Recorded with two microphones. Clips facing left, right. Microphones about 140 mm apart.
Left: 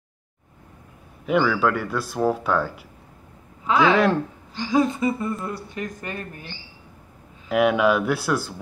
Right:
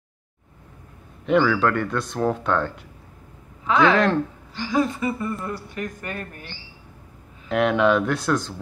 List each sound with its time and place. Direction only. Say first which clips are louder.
1.2 s a man's voice: right 1 dB; 5° left (ahead or behind)
4.6 s speech: left 2 dB; 20° left (ahead or behind)
7.4 s speech: even; 5° left (ahead or behind)